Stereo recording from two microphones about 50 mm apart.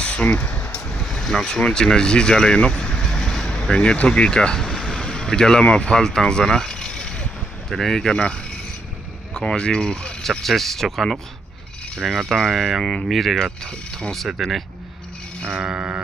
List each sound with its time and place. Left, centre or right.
0.0 s speech: left
0.7 s vehicle: centre
1.0 s speech: centre
4.6 s vehicle: centre
7.7 s speech: centre
10.4 s speech: centre
12.8 s speech: centre
13.1 s speech: centre
13.7 s speech: centre
14.1 s speech: centre
15.6 s a sound: right